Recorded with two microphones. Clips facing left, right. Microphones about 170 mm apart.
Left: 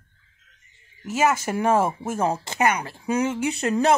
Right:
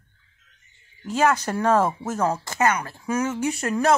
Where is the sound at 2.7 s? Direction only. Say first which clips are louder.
Left 1 dB; 15° left (ahead or behind).